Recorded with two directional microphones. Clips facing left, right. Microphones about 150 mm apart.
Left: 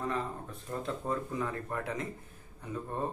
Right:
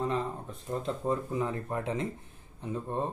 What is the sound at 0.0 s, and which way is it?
Speech, 20° right (ahead or behind).